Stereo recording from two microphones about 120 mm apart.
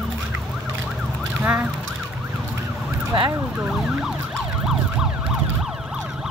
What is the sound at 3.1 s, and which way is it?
Emergency vehicle, 30° right (ahead or behind).